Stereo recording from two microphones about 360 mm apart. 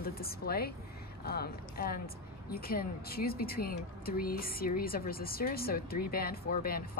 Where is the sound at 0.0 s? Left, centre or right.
Left.